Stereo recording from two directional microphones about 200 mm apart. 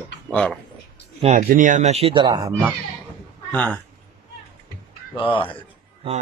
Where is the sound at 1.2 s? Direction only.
40° right (ahead or behind); by 2.7 s 15° right (ahead or behind).